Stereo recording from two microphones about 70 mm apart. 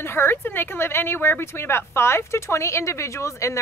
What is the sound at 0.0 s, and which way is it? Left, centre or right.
Speech, left.